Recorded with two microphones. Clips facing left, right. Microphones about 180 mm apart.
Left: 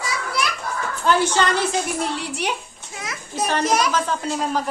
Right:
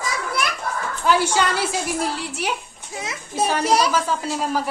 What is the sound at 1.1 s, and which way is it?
A woman's voice, 10° right (ahead or behind).